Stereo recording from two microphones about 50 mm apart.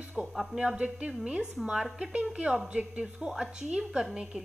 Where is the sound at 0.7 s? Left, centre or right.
Right.